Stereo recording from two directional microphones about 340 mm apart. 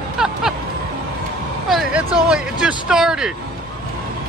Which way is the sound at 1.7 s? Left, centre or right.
Centre.